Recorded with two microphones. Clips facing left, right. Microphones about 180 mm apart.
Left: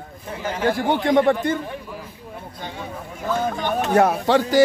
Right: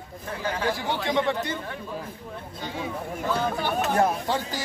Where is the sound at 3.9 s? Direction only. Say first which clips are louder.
Left 10 dB; 70° left (ahead or behind).